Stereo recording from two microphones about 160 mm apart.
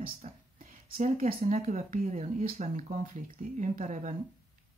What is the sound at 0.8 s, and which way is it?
Speech, 60° right (ahead or behind).